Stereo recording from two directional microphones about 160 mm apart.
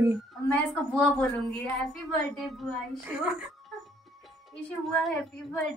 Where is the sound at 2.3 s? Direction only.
Centre (ahead or behind).